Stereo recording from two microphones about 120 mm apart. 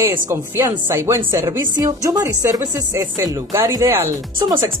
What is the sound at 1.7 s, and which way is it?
Speech, 30° right (ahead or behind).